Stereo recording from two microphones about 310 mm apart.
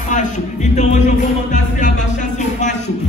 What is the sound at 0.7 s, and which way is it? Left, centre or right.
Music, left.